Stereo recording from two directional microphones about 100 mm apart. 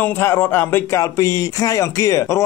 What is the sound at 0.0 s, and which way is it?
Speech, 20° left (ahead or behind).